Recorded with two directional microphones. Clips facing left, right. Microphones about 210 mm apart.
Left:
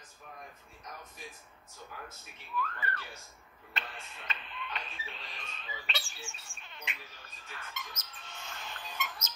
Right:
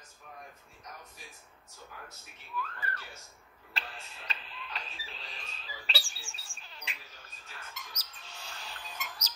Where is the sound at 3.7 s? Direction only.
35° right (ahead or behind).